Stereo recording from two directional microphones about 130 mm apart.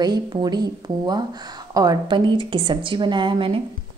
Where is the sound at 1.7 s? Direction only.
30° right (ahead or behind).